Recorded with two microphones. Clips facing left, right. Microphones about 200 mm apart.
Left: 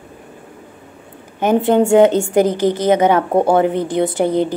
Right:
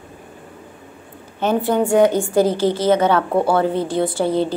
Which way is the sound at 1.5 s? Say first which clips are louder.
Left 5 dB; 25° left (ahead or behind).